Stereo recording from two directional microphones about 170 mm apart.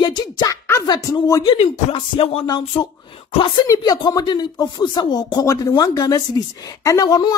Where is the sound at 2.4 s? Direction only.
25° left (ahead or behind).